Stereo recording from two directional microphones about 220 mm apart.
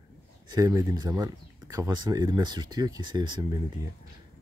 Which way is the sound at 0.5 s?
15° right (ahead or behind).